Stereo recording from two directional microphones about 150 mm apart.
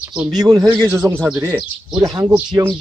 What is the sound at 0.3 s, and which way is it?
Speech, 25° right (ahead or behind).